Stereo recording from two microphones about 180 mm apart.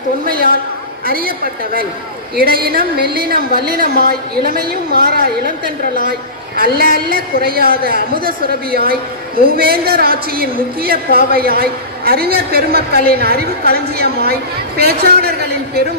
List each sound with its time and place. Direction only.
0.2 s a woman's voice: 55° right (ahead or behind)